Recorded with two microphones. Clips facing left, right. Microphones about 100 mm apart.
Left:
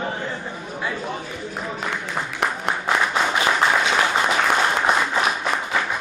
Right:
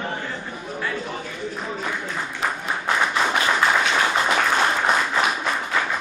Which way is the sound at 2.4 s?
65° left (ahead or behind).